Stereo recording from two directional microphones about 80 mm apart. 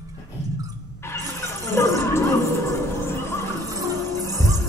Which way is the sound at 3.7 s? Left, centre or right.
Right.